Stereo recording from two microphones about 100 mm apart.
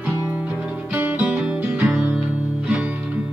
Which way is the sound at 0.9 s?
20° right (ahead or behind).